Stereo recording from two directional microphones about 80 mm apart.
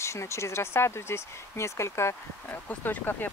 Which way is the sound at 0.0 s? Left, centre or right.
Left.